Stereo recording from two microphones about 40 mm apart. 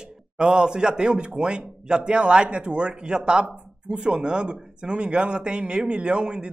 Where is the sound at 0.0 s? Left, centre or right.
Right.